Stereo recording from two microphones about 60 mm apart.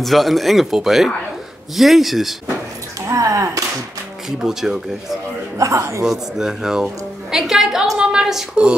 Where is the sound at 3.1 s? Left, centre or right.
Right.